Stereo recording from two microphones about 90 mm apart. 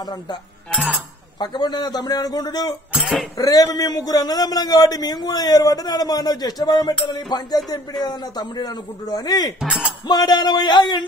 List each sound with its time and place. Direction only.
0.0 s a man's voice: 55° left (ahead or behind)
1.4 s a man's voice: 55° left (ahead or behind)
9.6 s speech: 10° right (ahead or behind)
10.0 s a man's voice: 50° left (ahead or behind)